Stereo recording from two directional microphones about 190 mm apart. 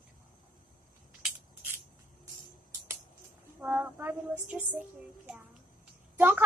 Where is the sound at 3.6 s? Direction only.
10° right (ahead or behind).